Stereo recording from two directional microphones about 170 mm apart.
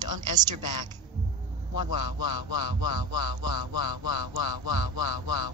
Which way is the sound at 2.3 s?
25° right (ahead or behind).